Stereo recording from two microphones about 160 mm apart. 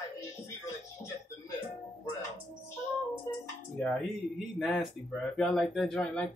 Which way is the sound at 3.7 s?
5° left (ahead or behind).